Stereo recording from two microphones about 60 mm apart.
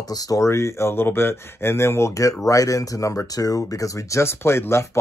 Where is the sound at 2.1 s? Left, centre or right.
Left.